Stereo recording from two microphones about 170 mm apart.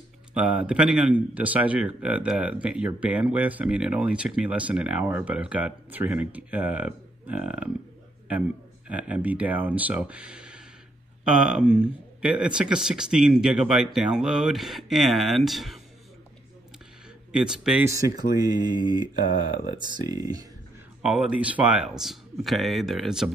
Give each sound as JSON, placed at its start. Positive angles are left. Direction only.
{"t": 0.3, "sound": "a man's voice", "side_deg": -5}
{"t": 17.3, "sound": "speech", "side_deg": -5}
{"t": 17.8, "sound": "a man's voice", "side_deg": -20}
{"t": 21.0, "sound": "speech", "side_deg": -5}